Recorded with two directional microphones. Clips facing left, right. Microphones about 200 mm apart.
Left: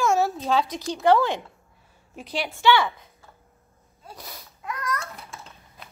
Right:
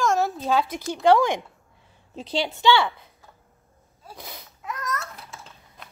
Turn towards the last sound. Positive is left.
turn(degrees=0)  # may be behind; listen again after turning